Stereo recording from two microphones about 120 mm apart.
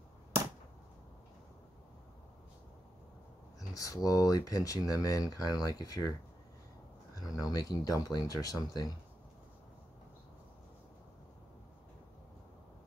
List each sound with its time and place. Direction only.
3.7 s speech: 30° left (ahead or behind)
7.3 s speech: 30° left (ahead or behind)